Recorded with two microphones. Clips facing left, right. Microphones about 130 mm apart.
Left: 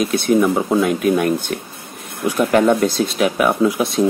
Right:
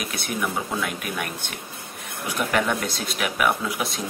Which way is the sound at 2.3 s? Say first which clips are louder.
Left 9 dB; 35° left (ahead or behind).